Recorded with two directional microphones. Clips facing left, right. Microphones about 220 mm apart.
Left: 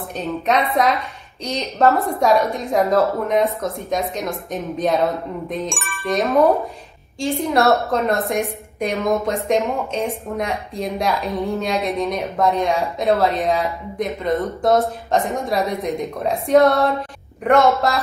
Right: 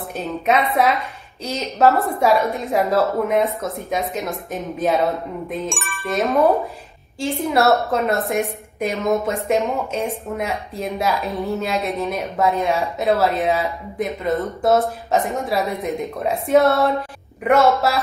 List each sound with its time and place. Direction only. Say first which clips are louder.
0.2 s a woman's voice: even; centre (ahead or behind)